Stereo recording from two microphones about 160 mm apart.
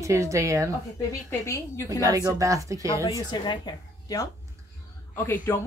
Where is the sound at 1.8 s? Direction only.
20° right (ahead or behind).